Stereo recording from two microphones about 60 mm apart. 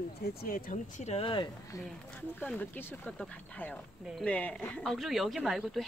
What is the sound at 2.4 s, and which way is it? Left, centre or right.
Speech, left.